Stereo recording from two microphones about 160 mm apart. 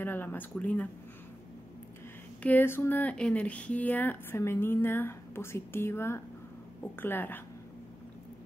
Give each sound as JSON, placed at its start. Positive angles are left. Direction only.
{"t": 0.0, "sound": "speech", "side_deg": 15}
{"t": 2.4, "sound": "speech", "side_deg": 15}